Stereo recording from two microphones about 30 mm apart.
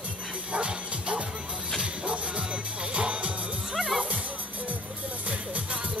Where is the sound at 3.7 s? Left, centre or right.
Centre.